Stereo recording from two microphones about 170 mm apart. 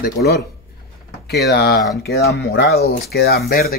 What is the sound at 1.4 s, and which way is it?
Speech, 70° left (ahead or behind).